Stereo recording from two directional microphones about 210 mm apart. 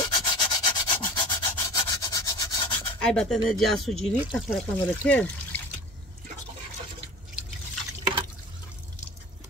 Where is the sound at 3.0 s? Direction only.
5° left (ahead or behind).